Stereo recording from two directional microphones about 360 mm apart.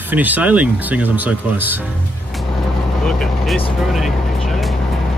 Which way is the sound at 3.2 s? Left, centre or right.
Centre.